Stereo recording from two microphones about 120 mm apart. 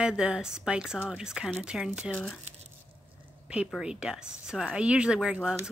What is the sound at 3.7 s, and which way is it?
A woman's voice, 5° right (ahead or behind).